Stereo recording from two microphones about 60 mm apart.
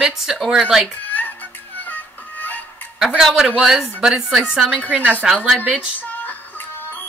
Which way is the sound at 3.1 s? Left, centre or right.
Centre.